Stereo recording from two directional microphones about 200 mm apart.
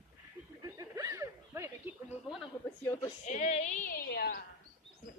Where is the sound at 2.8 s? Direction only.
10° left (ahead or behind).